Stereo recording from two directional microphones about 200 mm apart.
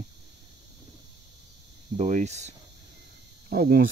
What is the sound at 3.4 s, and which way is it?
Speech, 50° right (ahead or behind).